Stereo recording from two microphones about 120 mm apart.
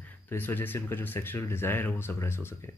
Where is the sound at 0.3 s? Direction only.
15° left (ahead or behind).